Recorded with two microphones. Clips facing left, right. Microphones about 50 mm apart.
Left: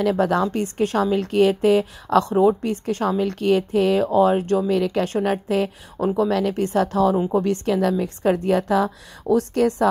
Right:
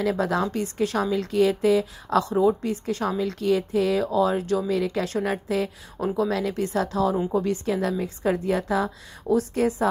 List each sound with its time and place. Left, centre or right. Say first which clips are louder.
0.1 s a woman's voice: left 4 dB; left
4.6 s a woman's voice: left 4 dB; left
6.0 s speech: left 4 dB; left
6.3 s a woman's voice: left 5 dB; left
7.3 s a woman's voice: left 4 dB; left